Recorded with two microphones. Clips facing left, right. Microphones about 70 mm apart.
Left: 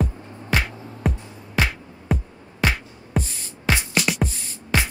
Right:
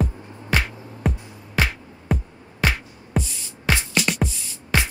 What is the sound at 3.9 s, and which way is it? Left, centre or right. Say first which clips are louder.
Music: even; centre.